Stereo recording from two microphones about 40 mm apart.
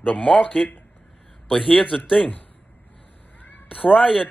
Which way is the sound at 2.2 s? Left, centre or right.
Left.